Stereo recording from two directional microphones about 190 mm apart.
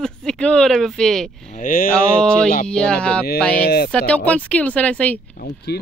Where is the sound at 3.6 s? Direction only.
55° left (ahead or behind).